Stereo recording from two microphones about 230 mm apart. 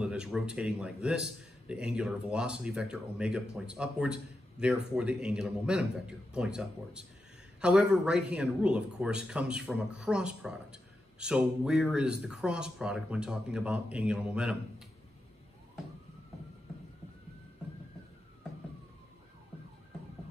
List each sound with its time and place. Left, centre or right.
0.0 s speech: centre